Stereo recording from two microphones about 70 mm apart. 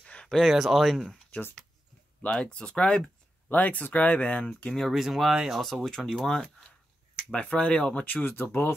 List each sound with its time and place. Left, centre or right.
0.0 s a sound: centre
0.4 s speech: centre
1.3 s speech: left
4.8 s speech: centre; by 8.7 s left